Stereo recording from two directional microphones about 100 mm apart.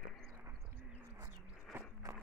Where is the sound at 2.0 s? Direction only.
40° right (ahead or behind).